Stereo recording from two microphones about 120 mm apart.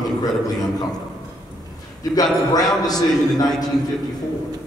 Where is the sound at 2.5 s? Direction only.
35° left (ahead or behind).